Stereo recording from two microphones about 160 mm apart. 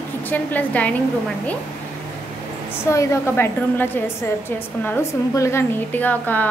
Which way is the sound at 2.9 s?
20° left (ahead or behind).